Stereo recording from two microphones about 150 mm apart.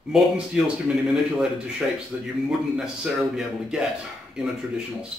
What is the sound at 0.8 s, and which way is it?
A man's voice, 5° right (ahead or behind).